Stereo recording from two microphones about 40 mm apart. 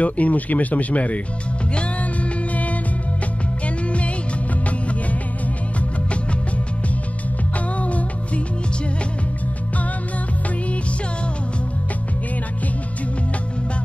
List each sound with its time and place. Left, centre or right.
0.0 s speech: left
2.5 s music: left